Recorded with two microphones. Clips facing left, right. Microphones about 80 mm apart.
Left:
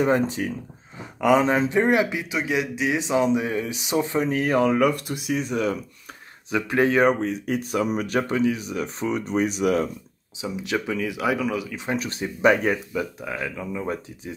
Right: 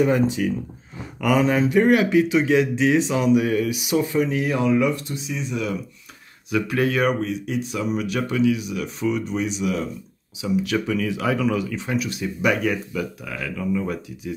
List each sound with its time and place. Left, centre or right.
0.0 s speech: left
2.3 s speech: centre; by 5.8 s left
6.5 s speech: left
10.4 s speech: left
12.0 s speech: left; by 13.9 s centre